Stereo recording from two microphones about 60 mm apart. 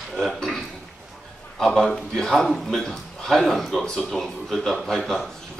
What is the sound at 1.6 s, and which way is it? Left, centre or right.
A man's voice, centre.